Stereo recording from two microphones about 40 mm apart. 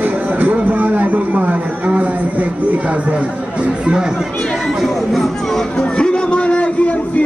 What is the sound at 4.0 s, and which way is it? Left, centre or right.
Speech, centre.